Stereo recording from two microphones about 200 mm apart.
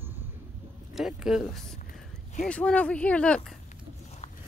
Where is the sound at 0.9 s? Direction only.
Centre (ahead or behind).